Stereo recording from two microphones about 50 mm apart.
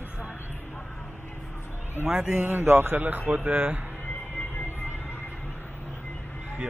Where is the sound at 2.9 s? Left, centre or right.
Right.